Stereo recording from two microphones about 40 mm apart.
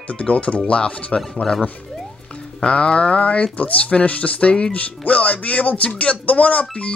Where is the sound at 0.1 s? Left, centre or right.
Left.